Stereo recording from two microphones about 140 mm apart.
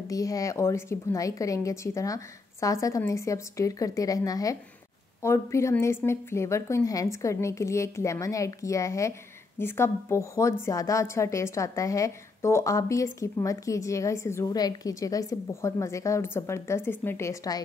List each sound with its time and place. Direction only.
0.1 s a woman's voice: 25° left (ahead or behind)